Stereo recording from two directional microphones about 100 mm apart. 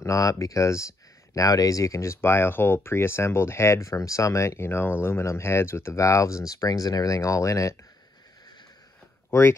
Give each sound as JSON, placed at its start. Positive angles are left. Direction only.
{"t": 0.0, "sound": "speech", "side_deg": 35}
{"t": 9.3, "sound": "speech", "side_deg": 25}